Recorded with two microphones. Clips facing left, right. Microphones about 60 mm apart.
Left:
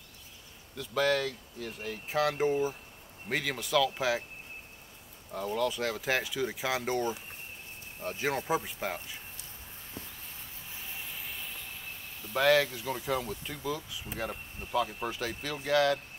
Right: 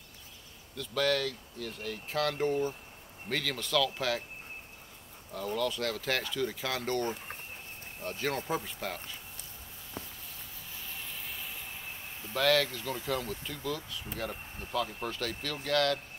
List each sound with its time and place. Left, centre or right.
0.7 s speech: centre
5.3 s speech: centre
11.1 s vehicle: centre
12.4 s speech: centre